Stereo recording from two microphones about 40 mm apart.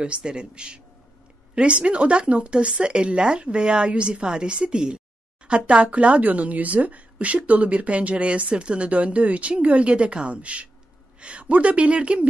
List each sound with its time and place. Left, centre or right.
0.0 s a woman's voice: right